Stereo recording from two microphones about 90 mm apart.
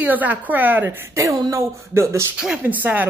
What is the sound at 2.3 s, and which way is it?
Speech, 10° right (ahead or behind).